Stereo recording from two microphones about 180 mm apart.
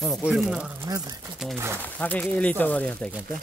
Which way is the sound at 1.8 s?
10° left (ahead or behind).